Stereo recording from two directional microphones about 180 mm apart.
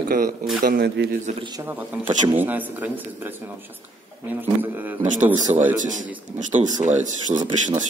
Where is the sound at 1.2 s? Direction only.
30° right (ahead or behind).